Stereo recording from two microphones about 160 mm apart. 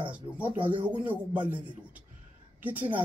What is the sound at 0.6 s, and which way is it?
Speech, 30° right (ahead or behind).